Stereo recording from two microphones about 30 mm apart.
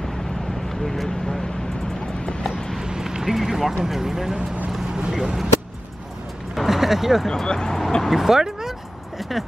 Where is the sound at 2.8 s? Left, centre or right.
Right.